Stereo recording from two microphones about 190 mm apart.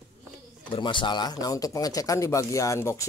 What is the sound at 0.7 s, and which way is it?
Speech, 25° left (ahead or behind).